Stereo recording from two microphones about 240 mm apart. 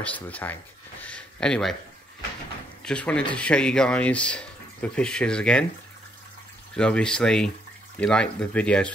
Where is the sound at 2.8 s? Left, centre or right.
Centre.